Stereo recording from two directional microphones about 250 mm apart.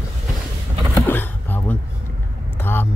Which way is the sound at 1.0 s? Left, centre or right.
Centre.